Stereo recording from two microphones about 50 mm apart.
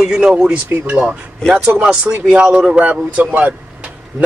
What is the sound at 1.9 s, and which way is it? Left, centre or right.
Speech, right.